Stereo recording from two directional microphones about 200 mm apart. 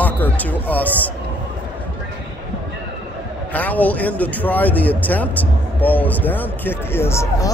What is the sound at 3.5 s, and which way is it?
Speech, 10° left (ahead or behind).